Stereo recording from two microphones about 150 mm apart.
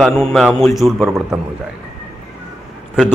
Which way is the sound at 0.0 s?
Centre (ahead or behind).